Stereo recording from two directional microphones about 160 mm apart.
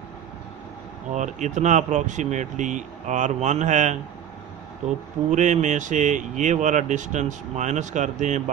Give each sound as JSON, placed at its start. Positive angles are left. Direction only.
{"t": 1.1, "sound": "speech", "side_deg": -50}
{"t": 5.3, "sound": "speech", "side_deg": -50}